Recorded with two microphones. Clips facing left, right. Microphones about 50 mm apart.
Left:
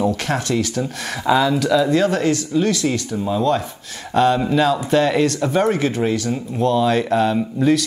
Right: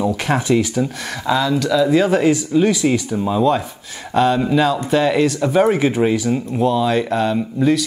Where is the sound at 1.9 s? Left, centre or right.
Centre.